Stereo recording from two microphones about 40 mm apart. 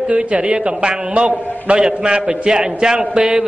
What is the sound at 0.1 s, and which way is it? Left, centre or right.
A man's voice, right.